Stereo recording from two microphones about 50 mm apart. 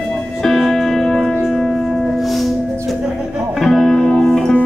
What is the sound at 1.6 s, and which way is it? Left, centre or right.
Music, centre.